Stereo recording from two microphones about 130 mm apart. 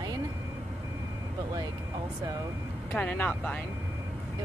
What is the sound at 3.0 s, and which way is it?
Speech, 15° left (ahead or behind).